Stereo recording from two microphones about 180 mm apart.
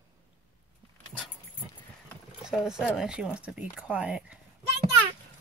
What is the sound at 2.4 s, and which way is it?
Speech, 5° right (ahead or behind).